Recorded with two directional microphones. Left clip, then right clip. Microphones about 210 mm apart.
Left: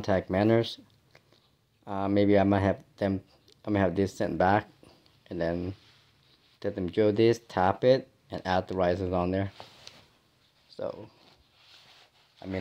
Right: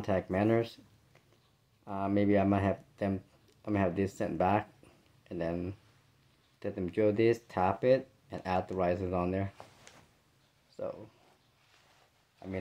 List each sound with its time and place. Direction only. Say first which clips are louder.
0.0 s speech: left 4 dB; 30° left (ahead or behind)
1.9 s speech: left 5 dB; 30° left (ahead or behind)
6.6 s speech: left 4 dB; 25° left (ahead or behind)